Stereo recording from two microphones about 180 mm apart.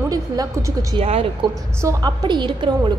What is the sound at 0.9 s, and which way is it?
Speech, 30° right (ahead or behind).